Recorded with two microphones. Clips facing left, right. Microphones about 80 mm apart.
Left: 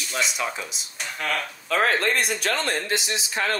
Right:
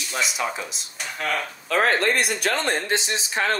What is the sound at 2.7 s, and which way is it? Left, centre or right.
Speech, right.